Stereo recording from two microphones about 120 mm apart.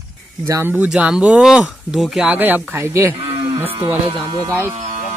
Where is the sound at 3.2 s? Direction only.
50° right (ahead or behind).